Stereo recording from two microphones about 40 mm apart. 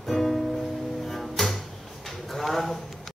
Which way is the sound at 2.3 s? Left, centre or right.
Centre.